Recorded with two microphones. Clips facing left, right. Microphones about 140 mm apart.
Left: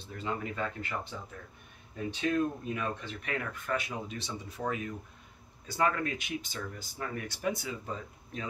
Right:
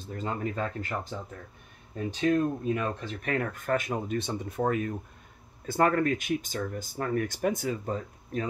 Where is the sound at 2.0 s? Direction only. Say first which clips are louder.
Right 4 dB; 40° right (ahead or behind).